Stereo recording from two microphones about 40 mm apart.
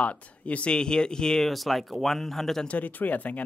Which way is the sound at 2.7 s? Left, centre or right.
Left.